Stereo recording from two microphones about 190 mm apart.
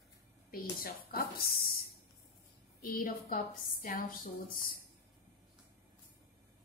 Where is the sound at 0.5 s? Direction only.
50° left (ahead or behind).